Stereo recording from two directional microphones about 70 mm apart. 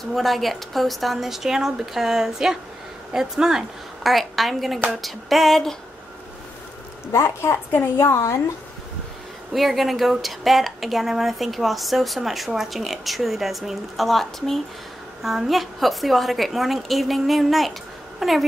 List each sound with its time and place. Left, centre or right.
0.1 s speech: centre
7.1 s a woman's voice: left
9.5 s speech: centre